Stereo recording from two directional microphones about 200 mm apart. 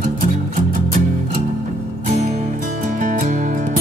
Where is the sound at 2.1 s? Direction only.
35° right (ahead or behind).